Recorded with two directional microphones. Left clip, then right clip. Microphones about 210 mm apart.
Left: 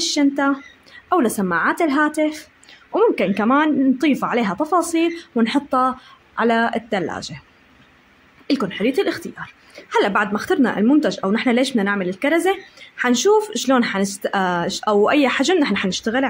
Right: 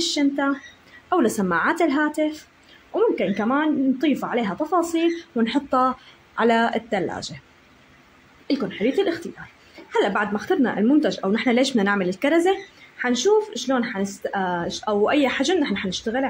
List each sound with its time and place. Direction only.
0.0 s speech: 20° left (ahead or behind)
8.5 s speech: 20° left (ahead or behind)